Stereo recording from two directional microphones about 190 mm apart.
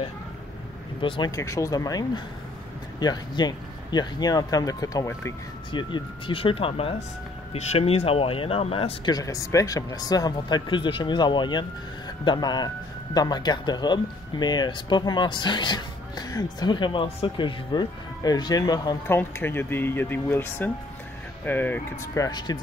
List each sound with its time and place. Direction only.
1.0 s speech: 25° left (ahead or behind)